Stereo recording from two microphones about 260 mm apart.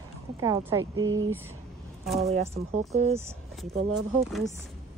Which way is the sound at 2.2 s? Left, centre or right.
Right.